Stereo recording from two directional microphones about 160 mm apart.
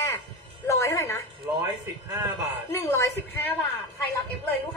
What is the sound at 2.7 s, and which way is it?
Speech, 15° left (ahead or behind).